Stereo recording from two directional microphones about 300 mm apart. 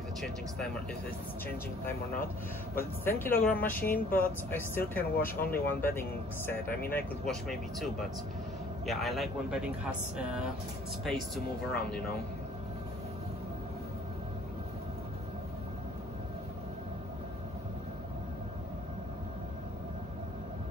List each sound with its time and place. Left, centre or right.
2.7 s speech: centre
5.1 s speech: left
5.4 s speech: centre